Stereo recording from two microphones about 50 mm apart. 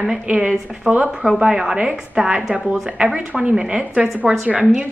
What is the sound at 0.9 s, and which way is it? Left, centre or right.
Speech, right.